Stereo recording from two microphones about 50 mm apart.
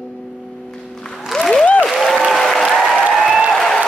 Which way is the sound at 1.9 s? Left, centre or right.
Centre.